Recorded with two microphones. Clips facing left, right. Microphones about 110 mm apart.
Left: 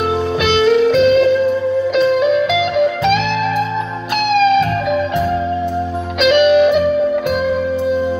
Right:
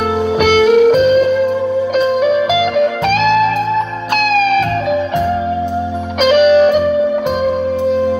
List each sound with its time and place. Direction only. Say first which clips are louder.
0.4 s music: right 4 dB; 50° right (ahead or behind)
6.3 s music: right 2 dB; 40° right (ahead or behind)